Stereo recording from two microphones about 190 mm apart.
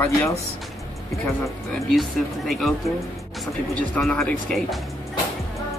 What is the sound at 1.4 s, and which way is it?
Speech, centre (ahead or behind).